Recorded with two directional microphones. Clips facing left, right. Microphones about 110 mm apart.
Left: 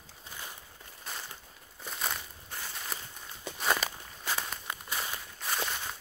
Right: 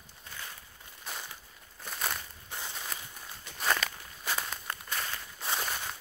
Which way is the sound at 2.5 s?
20° right (ahead or behind).